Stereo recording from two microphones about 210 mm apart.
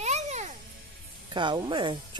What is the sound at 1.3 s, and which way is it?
Speech, 20° right (ahead or behind).